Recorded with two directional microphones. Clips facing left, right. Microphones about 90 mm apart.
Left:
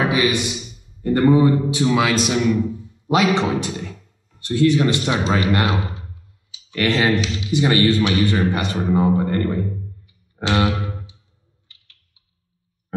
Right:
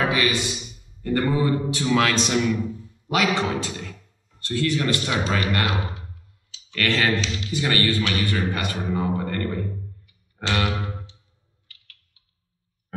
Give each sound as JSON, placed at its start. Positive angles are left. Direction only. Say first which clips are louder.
{"t": 0.0, "sound": "a man's voice", "louder": "left 4 dB", "side_deg": 20}
{"t": 2.6, "sound": "speech", "louder": "left 5 dB", "side_deg": 20}
{"t": 11.6, "sound": "a sound", "louder": "right 4 dB", "side_deg": 25}